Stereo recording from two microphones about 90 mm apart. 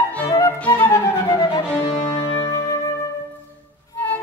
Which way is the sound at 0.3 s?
30° left (ahead or behind).